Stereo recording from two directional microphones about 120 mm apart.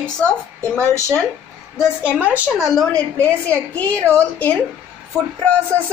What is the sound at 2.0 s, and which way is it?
Speech, 15° right (ahead or behind).